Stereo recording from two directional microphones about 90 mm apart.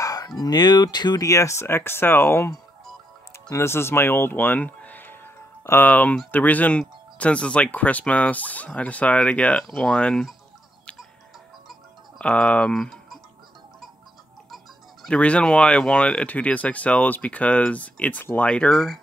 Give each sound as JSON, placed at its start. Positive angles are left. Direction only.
{"t": 0.0, "sound": "a sound", "side_deg": 45}
{"t": 0.4, "sound": "speech", "side_deg": 50}
{"t": 1.2, "sound": "speech", "side_deg": 35}
{"t": 3.5, "sound": "speech", "side_deg": 30}
{"t": 12.2, "sound": "speech", "side_deg": 10}
{"t": 14.5, "sound": "music", "side_deg": 0}
{"t": 15.1, "sound": "speech", "side_deg": 10}